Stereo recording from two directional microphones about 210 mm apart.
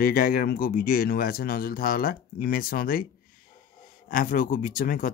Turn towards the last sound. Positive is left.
turn(degrees=40)  # may be behind; listen again after turning